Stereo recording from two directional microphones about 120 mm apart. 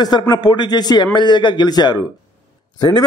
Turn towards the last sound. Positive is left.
turn(degrees=35)  # may be behind; listen again after turning